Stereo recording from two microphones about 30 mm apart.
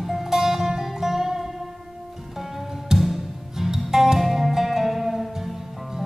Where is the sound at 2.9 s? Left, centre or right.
Centre.